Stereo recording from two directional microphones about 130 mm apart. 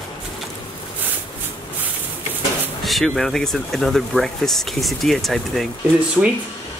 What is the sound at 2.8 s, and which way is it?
Speech, centre (ahead or behind).